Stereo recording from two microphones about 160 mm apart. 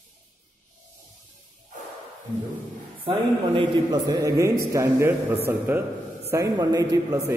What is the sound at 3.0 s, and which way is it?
A man's voice, 30° right (ahead or behind).